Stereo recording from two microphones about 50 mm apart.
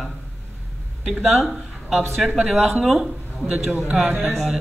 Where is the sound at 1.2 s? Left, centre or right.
Centre.